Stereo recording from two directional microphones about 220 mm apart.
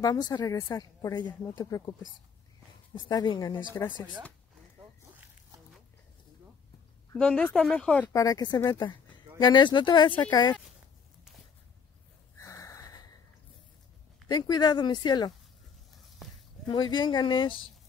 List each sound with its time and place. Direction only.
0.0 s speech: 15° left (ahead or behind)
7.1 s speech: 5° left (ahead or behind)
8.1 s speech: 15° left (ahead or behind)
12.4 s a sound: 15° left (ahead or behind)
14.3 s speech: 20° left (ahead or behind)
16.6 s speech: 20° left (ahead or behind)